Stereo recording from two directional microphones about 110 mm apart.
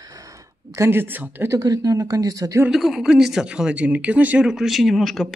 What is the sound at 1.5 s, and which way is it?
Speech, 35° right (ahead or behind).